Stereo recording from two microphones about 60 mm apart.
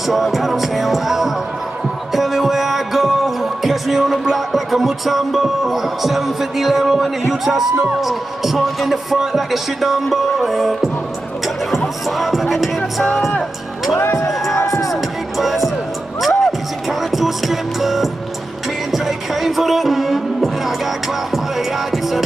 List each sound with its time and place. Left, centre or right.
0.1 s speech: centre
2.1 s music: centre
8.0 s speech: centre
12.2 s music: centre
13.9 s music: left
14.6 s music: left
14.9 s music: centre